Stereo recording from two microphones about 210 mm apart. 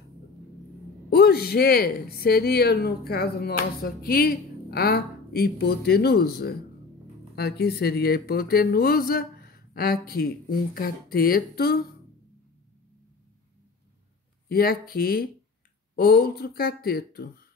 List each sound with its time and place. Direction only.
1.1 s speech: 50° left (ahead or behind)
14.5 s speech: 45° left (ahead or behind)